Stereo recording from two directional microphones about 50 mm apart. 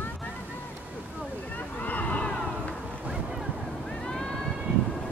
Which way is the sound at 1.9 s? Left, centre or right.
Left.